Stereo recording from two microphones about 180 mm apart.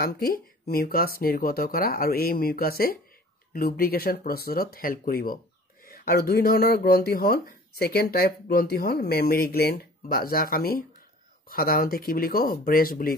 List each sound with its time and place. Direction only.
0.0 s speech: 55° left (ahead or behind)